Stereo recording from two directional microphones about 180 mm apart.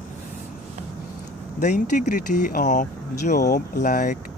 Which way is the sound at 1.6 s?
45° left (ahead or behind).